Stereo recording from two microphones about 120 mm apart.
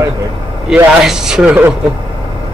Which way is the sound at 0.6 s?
5° right (ahead or behind).